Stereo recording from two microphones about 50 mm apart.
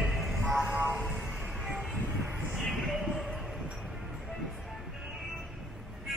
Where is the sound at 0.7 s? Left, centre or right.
Right.